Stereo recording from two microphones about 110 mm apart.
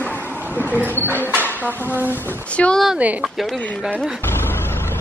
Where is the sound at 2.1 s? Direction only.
20° left (ahead or behind).